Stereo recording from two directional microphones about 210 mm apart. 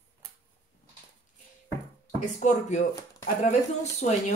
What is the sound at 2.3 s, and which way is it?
Speech, 35° left (ahead or behind).